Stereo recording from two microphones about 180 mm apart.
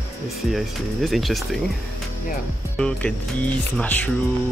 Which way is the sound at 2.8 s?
5° left (ahead or behind).